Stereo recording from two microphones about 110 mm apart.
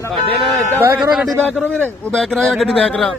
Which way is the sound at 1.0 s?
5° right (ahead or behind).